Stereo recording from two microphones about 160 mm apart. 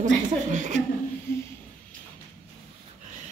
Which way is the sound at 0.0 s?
50° right (ahead or behind).